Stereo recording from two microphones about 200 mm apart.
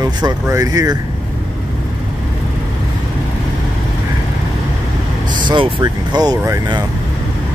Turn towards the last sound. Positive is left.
turn(degrees=-20)  # may be behind; listen again after turning